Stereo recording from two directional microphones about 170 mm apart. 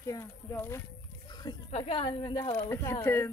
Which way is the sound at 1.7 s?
35° left (ahead or behind).